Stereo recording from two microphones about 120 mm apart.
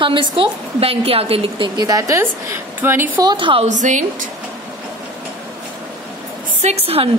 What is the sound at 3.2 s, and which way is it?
Speech, 40° right (ahead or behind).